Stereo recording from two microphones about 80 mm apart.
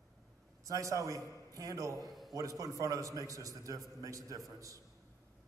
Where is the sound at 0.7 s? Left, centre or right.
Right.